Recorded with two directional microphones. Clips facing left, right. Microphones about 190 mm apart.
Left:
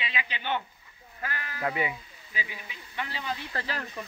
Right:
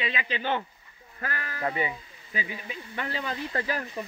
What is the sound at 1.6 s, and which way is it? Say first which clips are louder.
Speech: even; 5° left (ahead or behind).